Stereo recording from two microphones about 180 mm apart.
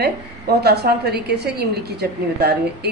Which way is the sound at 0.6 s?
60° right (ahead or behind).